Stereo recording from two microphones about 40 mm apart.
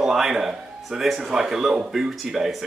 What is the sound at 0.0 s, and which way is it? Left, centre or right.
Speech, centre.